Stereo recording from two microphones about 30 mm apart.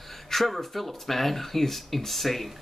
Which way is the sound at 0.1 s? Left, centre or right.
Centre.